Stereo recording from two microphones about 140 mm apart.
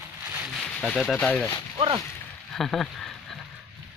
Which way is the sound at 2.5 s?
Centre (ahead or behind).